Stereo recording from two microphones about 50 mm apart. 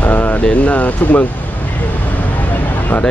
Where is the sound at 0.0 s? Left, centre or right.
Left.